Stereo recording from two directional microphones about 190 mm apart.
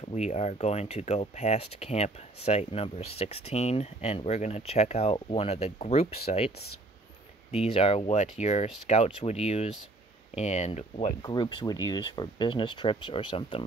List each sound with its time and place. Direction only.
0.1 s speech: 35° left (ahead or behind)
7.5 s speech: 30° left (ahead or behind)